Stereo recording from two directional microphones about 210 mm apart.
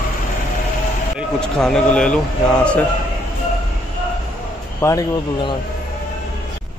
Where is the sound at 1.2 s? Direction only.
Centre (ahead or behind).